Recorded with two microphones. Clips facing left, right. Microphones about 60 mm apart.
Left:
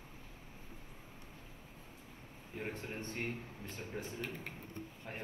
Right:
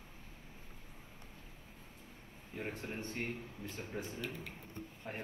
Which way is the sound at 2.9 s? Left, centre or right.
Left.